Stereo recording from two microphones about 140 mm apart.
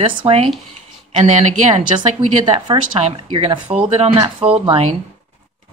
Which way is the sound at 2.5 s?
45° right (ahead or behind).